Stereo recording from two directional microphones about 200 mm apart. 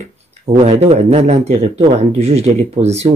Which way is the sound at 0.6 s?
30° right (ahead or behind).